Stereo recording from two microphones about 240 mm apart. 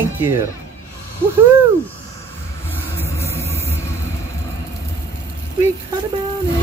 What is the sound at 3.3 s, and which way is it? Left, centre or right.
Vehicle, centre.